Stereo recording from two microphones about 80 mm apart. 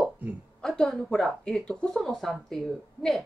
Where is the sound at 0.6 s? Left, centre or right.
Centre.